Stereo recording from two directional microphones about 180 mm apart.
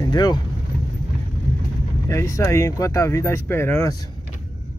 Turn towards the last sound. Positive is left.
turn(degrees=15)  # may be behind; listen again after turning